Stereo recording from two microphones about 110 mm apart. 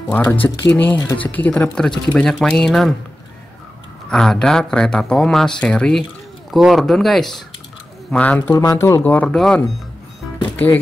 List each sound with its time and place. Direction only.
0.1 s speech: 15° left (ahead or behind); by 3.0 s centre (ahead or behind)
4.1 s speech: 5° left (ahead or behind)
8.5 s speech: 30° left (ahead or behind)
9.0 s speech: 15° left (ahead or behind)
10.5 s music: 15° left (ahead or behind)